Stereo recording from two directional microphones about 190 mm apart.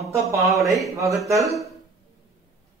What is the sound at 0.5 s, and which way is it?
Speech, 15° right (ahead or behind).